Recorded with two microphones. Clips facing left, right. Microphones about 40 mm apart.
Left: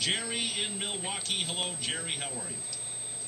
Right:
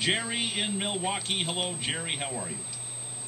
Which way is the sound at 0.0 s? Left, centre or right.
Right.